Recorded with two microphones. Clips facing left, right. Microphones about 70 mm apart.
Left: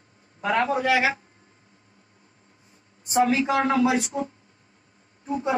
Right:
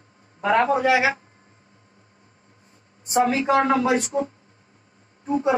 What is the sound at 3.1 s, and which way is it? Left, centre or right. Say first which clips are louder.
A woman's voice: right 2 dB; right.